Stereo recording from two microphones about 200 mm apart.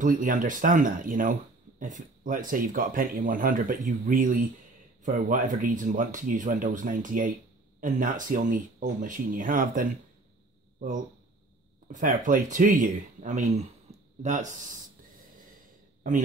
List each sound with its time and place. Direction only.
0.0 s speech: 40° right (ahead or behind)
11.9 s speech: 40° right (ahead or behind)